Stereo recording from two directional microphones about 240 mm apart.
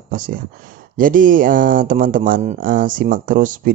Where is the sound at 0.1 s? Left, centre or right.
Right.